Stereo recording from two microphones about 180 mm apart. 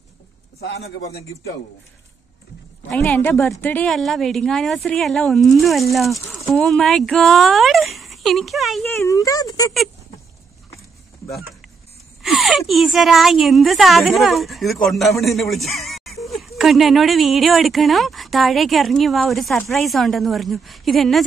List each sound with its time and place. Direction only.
0.6 s a man's voice: 65° left (ahead or behind)
2.9 s a woman's voice: 5° left (ahead or behind)
9.0 s speech: 20° left (ahead or behind)
12.2 s speech: centre (ahead or behind)